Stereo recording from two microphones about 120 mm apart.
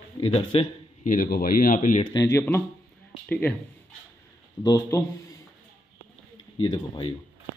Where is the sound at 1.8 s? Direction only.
90° left.